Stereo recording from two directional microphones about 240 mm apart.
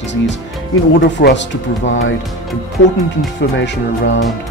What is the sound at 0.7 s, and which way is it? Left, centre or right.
Speech, left.